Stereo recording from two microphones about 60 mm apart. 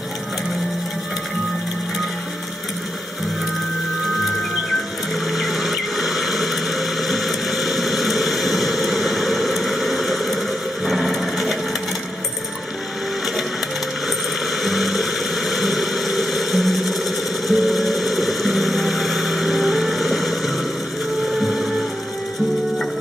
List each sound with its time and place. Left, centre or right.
5.1 s a sound: centre
10.9 s sewing machine: centre
14.6 s vehicle: centre
21.4 s printer: centre